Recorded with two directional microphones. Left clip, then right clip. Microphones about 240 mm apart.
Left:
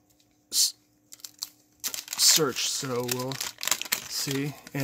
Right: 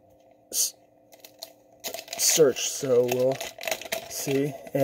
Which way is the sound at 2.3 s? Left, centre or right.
Left.